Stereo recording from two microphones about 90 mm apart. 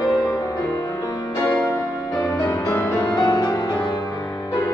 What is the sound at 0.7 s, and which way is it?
Music, 25° left (ahead or behind).